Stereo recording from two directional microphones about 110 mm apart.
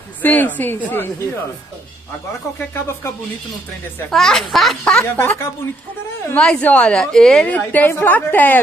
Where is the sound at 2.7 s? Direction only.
25° left (ahead or behind).